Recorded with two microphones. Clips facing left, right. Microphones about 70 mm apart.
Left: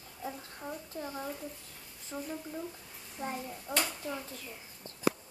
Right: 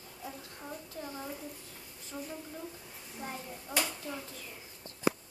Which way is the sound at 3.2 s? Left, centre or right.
Left.